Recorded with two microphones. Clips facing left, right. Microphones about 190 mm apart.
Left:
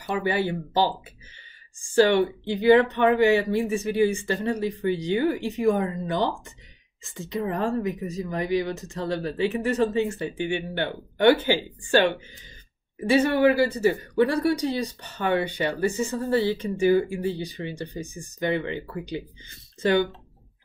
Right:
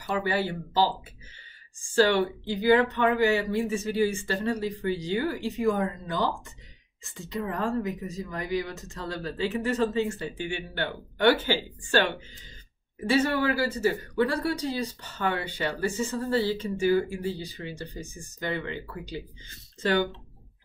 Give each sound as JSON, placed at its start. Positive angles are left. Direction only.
{"t": 0.0, "sound": "speech", "side_deg": 15}
{"t": 2.0, "sound": "speech", "side_deg": 20}
{"t": 13.1, "sound": "speech", "side_deg": 15}